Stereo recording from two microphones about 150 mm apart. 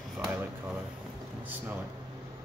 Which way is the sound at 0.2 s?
10° right (ahead or behind).